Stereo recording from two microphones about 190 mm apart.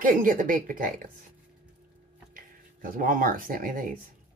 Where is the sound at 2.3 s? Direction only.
45° right (ahead or behind).